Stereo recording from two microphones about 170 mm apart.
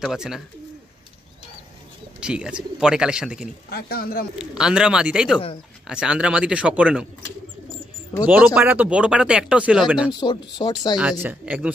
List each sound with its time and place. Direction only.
0.0 s speech: 5° right (ahead or behind)
2.1 s speech: 5° right (ahead or behind)
3.7 s speech: 60° left (ahead or behind)
4.4 s speech: 5° right (ahead or behind)
8.5 s speech: 5° right (ahead or behind)
10.1 s speech: 25° left (ahead or behind)
11.0 s speech: 5° right (ahead or behind)